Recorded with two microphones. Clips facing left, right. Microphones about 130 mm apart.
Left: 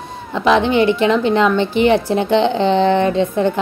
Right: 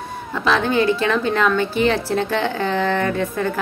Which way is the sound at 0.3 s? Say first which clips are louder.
Left 5 dB; 20° left (ahead or behind).